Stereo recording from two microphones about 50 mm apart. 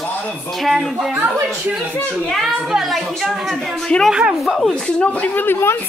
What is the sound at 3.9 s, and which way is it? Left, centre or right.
Speech, centre.